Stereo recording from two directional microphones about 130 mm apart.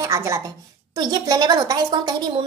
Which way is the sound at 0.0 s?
25° right (ahead or behind).